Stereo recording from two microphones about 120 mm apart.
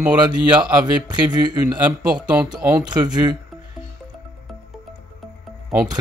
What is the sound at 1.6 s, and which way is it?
Speech, 15° right (ahead or behind).